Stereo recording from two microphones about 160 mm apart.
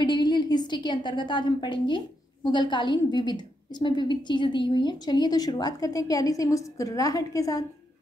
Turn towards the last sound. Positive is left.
turn(degrees=20)  # may be behind; listen again after turning